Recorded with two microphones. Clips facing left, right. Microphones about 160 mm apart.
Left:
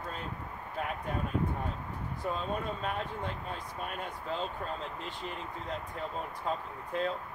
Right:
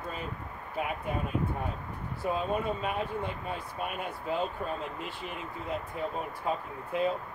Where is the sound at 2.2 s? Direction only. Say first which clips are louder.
Right 4 dB; 10° right (ahead or behind).